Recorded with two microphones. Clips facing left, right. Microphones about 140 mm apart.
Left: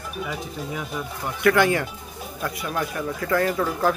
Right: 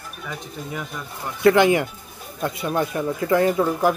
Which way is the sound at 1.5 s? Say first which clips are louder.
Right 4 dB; 20° right (ahead or behind).